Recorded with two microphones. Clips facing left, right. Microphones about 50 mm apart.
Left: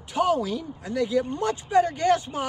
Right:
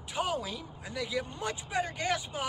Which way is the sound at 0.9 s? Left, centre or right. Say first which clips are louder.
Left 10 dB; left.